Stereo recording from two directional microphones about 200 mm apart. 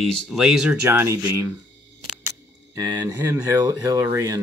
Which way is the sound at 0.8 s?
15° right (ahead or behind).